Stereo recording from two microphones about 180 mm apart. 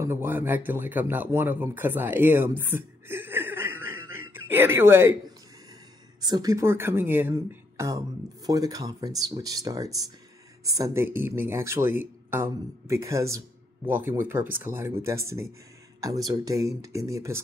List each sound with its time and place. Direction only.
0.0 s speech: 15° right (ahead or behind)
6.2 s speech: 20° right (ahead or behind)